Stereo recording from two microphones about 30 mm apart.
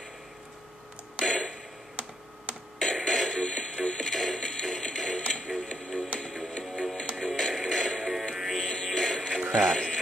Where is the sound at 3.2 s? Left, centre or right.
Left.